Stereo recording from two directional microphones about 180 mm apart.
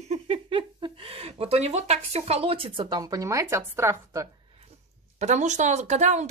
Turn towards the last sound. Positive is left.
turn(degrees=-40)  # may be behind; listen again after turning